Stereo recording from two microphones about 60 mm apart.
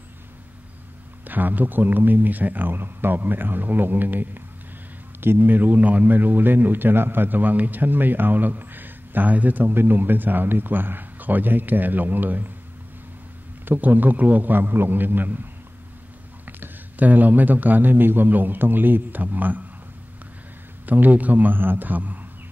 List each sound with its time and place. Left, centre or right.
1.2 s a man's voice: right
13.7 s a man's voice: right
16.4 s a man's voice: right
20.8 s a man's voice: right